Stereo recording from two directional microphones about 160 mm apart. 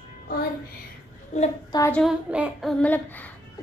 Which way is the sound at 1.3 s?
45° left (ahead or behind).